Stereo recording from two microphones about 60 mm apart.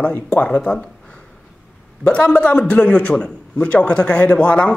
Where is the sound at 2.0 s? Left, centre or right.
Left.